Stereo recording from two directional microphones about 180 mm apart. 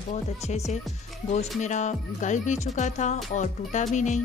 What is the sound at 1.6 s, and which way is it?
Speech, 40° left (ahead or behind).